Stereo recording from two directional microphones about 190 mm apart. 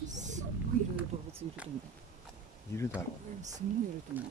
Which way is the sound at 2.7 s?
15° left (ahead or behind).